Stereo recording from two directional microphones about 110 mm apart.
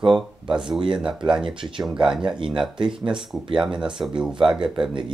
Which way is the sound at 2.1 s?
5° right (ahead or behind).